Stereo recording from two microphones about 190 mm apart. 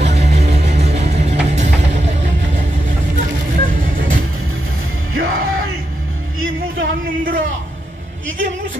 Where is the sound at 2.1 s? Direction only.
35° right (ahead or behind).